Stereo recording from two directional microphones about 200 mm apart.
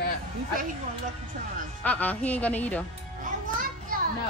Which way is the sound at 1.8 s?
10° left (ahead or behind).